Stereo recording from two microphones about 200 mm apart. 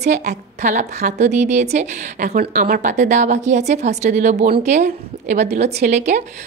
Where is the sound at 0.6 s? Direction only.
40° right (ahead or behind).